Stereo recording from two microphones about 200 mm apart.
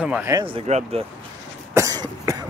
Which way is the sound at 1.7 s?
20° right (ahead or behind).